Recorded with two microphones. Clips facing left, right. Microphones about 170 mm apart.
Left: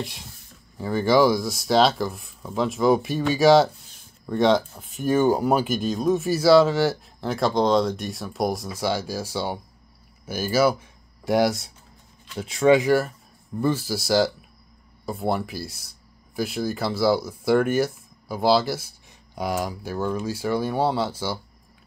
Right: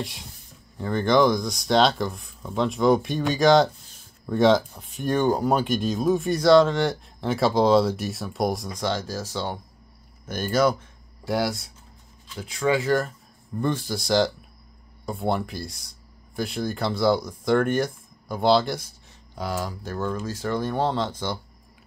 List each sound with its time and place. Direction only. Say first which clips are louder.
0.0 s speech: even; centre (ahead or behind)
11.2 s speech: left 5 dB; 20° left (ahead or behind)
13.6 s speech: left 2 dB; 5° left (ahead or behind)